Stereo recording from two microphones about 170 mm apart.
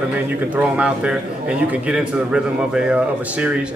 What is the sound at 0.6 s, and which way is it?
A man's voice, 5° right (ahead or behind).